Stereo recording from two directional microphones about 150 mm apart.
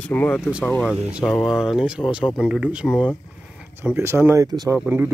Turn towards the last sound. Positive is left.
turn(degrees=-25)  # may be behind; listen again after turning